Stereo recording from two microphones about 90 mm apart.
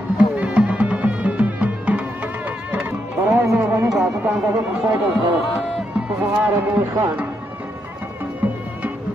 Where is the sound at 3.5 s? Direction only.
25° right (ahead or behind).